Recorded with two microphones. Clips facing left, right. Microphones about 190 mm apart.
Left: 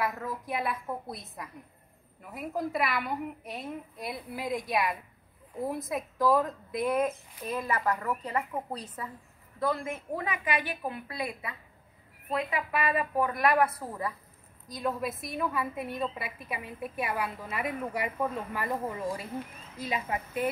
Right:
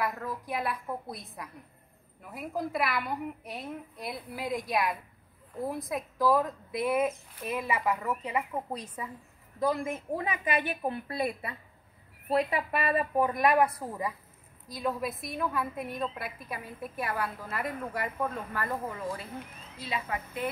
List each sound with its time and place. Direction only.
0.0 s a woman's voice: centre (ahead or behind); by 14.1 s 15° right (ahead or behind)
14.7 s a woman's voice: centre (ahead or behind); by 20.4 s 15° left (ahead or behind)